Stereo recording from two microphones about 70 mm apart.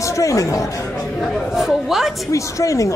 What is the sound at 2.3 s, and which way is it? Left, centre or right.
Speech, left.